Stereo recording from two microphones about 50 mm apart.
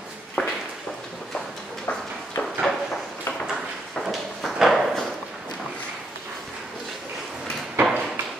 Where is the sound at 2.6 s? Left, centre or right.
Centre.